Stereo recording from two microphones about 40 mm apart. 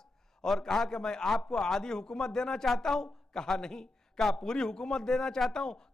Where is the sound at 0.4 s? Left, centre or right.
Centre.